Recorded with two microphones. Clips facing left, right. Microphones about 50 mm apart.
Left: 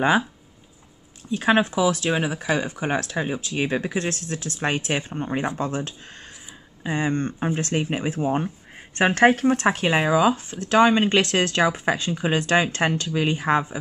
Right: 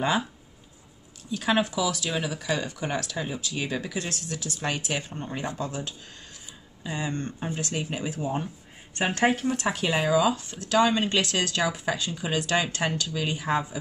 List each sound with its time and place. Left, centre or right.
1.3 s speech: left